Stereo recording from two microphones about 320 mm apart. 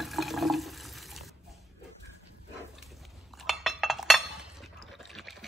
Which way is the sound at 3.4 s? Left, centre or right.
Centre.